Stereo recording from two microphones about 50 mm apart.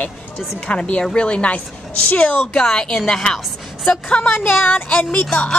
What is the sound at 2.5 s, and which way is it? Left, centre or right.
A woman's voice, centre.